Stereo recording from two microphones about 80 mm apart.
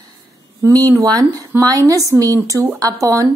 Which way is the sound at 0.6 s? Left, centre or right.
Right.